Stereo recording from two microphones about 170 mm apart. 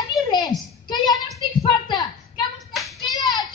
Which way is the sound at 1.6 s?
25° left (ahead or behind).